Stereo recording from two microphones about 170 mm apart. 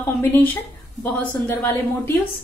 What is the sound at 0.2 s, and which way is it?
A woman's voice, 10° left (ahead or behind).